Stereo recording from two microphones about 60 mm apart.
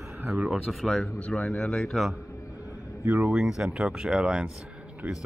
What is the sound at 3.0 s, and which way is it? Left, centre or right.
Speech, right.